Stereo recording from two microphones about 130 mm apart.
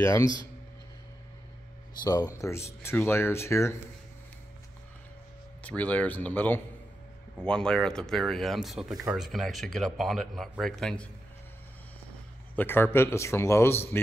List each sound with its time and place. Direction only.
0.0 s speech: 25° left (ahead or behind)
2.0 s speech: 25° left (ahead or behind)
5.6 s speech: 10° left (ahead or behind)
12.5 s speech: 15° left (ahead or behind)